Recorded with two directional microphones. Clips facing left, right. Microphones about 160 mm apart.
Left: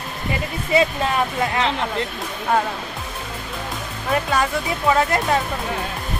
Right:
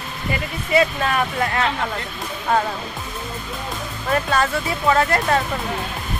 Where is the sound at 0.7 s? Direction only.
20° left (ahead or behind).